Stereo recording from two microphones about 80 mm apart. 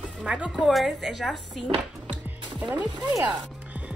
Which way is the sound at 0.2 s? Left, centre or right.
Centre.